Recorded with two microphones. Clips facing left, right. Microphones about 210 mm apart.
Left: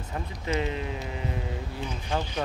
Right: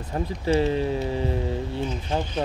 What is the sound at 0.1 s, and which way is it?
Speech, 35° right (ahead or behind).